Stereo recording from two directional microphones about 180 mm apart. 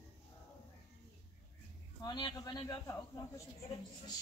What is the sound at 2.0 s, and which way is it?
Speech, 25° left (ahead or behind).